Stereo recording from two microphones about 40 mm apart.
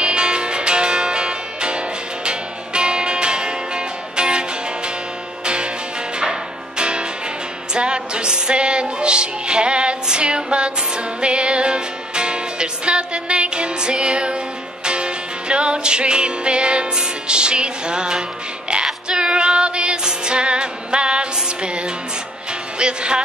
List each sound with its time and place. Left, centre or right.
0.0 s music: right
6.8 s music: right
22.8 s music: right